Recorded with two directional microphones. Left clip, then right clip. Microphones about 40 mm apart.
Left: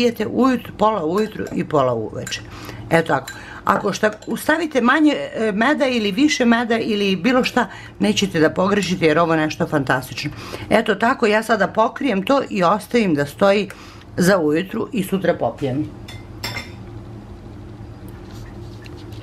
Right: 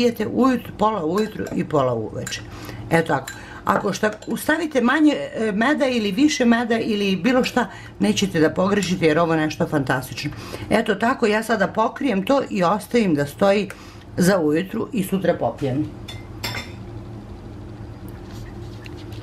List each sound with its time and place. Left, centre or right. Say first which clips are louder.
0.0 s speech: left 1 dB; left